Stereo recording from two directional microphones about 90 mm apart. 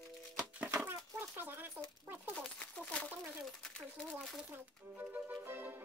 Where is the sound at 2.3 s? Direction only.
15° left (ahead or behind).